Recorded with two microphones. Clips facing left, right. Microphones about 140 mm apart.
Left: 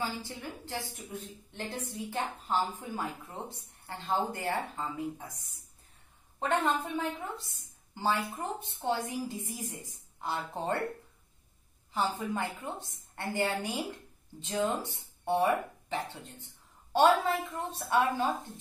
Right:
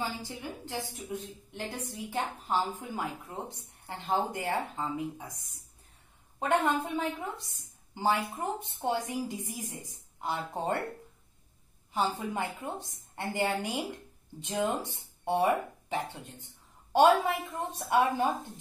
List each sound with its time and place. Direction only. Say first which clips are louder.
0.2 s a woman's voice: right 2 dB; 15° right (ahead or behind)
6.5 s a woman's voice: right 2 dB; 15° right (ahead or behind)
11.9 s a woman's voice: right 1 dB; 15° right (ahead or behind)